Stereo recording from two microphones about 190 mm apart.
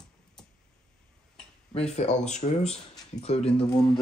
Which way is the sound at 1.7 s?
35° left (ahead or behind).